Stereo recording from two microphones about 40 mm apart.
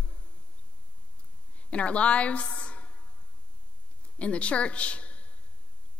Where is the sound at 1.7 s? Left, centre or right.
Left.